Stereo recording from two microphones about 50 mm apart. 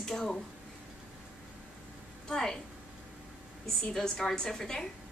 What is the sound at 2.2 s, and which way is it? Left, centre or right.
Speech, centre.